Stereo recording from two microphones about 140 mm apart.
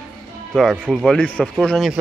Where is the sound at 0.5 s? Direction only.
Centre (ahead or behind).